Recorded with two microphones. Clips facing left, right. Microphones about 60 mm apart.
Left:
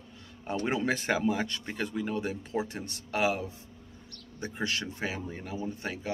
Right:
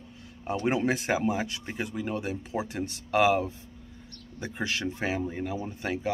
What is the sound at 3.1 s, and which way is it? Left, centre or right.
Speech, right.